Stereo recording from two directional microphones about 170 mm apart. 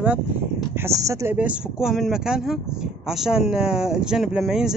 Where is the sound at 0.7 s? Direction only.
15° right (ahead or behind).